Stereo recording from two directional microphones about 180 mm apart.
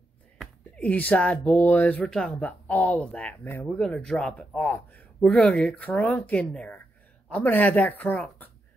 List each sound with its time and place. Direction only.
0.4 s speech: 5° left (ahead or behind)